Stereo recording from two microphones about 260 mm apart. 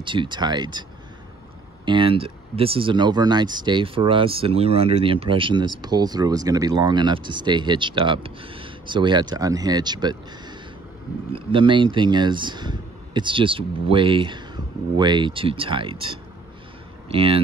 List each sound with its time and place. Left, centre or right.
0.0 s speech: centre
1.9 s speech: centre
11.3 s speech: centre